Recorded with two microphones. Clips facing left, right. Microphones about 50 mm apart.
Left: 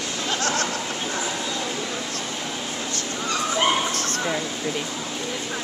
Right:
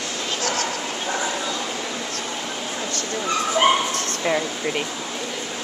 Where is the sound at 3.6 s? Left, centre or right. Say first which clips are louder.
Right 4 dB; centre.